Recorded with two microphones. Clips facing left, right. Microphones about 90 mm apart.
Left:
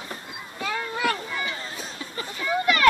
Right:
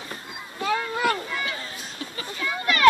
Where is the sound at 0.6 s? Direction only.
20° right (ahead or behind).